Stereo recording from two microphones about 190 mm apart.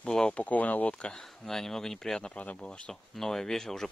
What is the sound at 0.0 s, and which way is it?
Speech, 5° left (ahead or behind).